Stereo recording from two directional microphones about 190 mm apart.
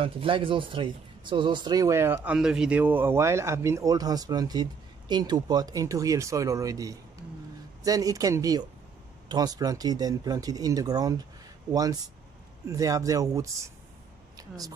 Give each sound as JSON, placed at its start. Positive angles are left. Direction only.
{"t": 0.0, "sound": "speech", "side_deg": -25}